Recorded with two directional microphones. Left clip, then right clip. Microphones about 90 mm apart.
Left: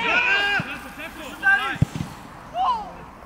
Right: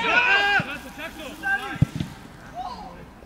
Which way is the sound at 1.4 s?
10° left (ahead or behind).